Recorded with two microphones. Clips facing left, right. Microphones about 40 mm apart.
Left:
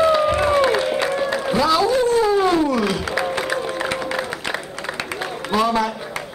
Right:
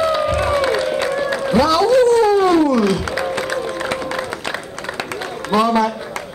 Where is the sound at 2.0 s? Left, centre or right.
Centre.